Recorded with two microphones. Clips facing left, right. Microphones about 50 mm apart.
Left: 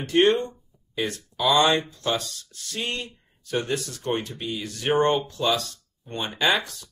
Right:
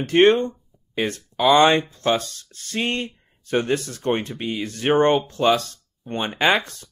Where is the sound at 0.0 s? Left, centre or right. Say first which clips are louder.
Right 4 dB; right.